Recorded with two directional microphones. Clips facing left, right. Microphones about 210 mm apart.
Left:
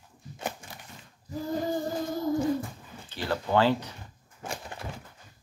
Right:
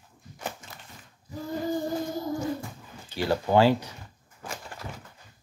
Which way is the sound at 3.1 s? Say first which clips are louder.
Right 4 dB; 15° right (ahead or behind).